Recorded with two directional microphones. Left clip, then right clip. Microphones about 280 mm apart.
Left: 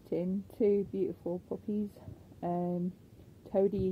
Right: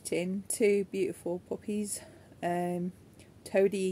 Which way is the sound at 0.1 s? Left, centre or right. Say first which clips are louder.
Right 2 dB; centre.